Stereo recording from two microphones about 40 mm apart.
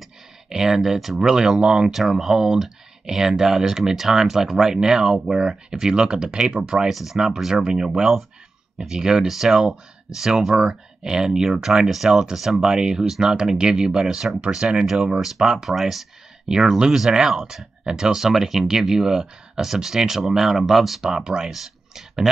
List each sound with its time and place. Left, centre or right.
0.5 s speech: centre
1.3 s speech: centre
6.9 s speech: centre
10.7 s speech: centre
21.0 s speech: centre